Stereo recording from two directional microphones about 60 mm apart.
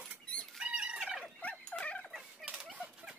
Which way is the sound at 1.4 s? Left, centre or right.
Left.